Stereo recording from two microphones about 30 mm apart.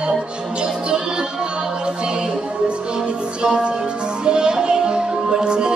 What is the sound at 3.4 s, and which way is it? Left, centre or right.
Music, right.